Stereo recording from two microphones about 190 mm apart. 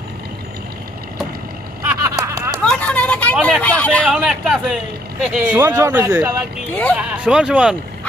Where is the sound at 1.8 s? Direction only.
15° right (ahead or behind).